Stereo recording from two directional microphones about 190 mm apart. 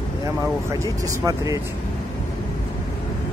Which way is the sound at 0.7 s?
15° right (ahead or behind).